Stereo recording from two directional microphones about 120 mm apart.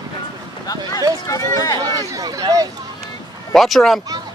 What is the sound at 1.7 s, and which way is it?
Speech, 30° right (ahead or behind).